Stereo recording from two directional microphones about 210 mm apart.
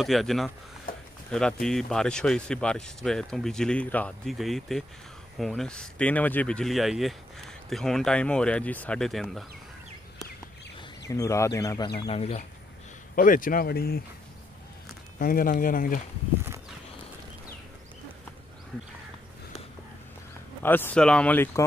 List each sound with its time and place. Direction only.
0.0 s speech: centre (ahead or behind)
11.1 s speech: 15° left (ahead or behind)
12.0 s speech: 30° left (ahead or behind)
13.1 s speech: 40° left (ahead or behind)
15.1 s speech: 40° left (ahead or behind)
20.6 s speech: 10° left (ahead or behind)